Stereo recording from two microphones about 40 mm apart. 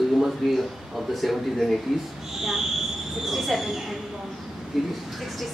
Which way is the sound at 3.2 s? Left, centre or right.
Centre.